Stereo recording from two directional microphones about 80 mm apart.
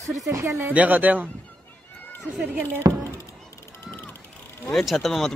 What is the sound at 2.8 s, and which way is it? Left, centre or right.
Speech, right.